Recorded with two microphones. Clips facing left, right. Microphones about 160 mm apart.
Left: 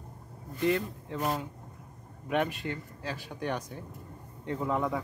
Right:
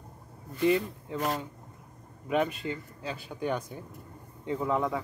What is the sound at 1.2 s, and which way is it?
Speech, 10° left (ahead or behind).